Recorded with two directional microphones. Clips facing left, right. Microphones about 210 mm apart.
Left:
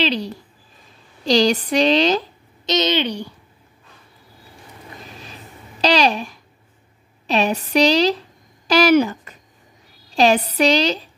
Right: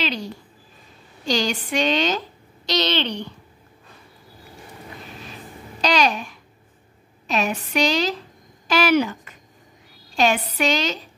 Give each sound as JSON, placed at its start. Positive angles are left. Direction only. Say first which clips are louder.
{"t": 0.0, "sound": "a woman's voice", "louder": "left 5 dB", "side_deg": 35}
{"t": 2.6, "sound": "a woman's voice", "louder": "left 3 dB", "side_deg": 20}
{"t": 5.8, "sound": "a woman's voice", "louder": "left 3 dB", "side_deg": 35}